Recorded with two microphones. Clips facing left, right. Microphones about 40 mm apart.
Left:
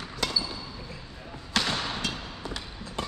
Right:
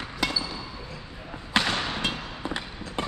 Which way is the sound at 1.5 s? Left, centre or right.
Right.